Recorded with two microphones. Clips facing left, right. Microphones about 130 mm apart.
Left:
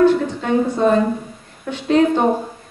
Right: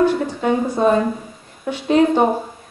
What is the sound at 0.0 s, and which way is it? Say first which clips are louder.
A woman's voice: left 2 dB; 10° right (ahead or behind).